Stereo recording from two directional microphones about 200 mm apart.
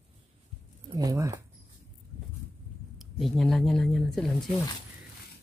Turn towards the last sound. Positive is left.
turn(degrees=0)  # may be behind; listen again after turning